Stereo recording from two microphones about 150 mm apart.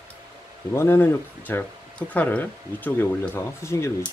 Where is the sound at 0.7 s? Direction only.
15° left (ahead or behind).